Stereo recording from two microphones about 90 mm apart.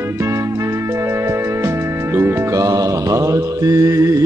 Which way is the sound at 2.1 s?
30° right (ahead or behind).